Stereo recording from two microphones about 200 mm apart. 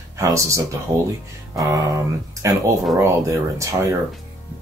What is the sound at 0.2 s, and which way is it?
Speech, 15° right (ahead or behind).